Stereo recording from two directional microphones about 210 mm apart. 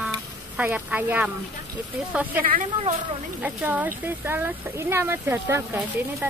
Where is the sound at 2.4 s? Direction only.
40° right (ahead or behind).